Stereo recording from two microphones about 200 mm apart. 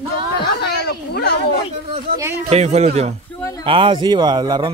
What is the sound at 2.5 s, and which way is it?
Speech, 35° right (ahead or behind).